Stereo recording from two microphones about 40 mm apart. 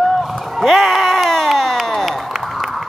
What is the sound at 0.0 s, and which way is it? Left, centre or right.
Run, centre.